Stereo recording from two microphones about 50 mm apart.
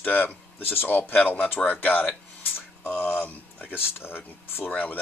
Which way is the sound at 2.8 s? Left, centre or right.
Left.